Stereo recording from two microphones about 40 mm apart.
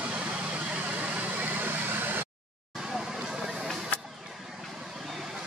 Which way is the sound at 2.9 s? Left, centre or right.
Centre.